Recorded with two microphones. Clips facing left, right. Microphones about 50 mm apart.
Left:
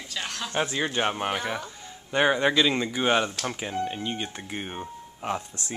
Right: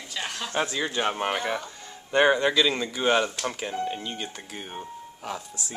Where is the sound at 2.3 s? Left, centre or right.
Left.